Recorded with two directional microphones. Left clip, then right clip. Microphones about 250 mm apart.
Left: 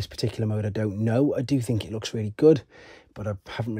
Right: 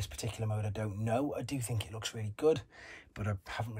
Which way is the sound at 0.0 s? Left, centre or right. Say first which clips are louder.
Left 11 dB; left.